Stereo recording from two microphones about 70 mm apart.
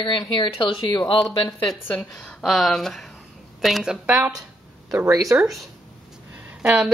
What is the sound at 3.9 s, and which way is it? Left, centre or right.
Speech, centre.